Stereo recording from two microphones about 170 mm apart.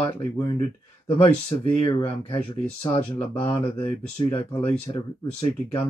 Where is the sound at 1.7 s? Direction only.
30° left (ahead or behind).